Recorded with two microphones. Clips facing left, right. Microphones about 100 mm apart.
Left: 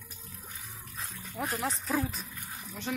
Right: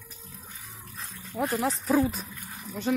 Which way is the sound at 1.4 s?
20° right (ahead or behind).